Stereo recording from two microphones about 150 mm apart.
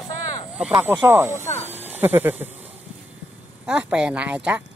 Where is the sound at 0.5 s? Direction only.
5° right (ahead or behind).